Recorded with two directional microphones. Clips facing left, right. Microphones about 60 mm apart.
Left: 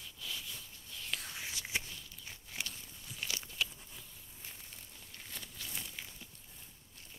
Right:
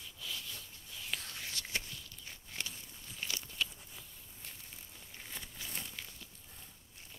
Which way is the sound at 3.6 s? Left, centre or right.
Centre.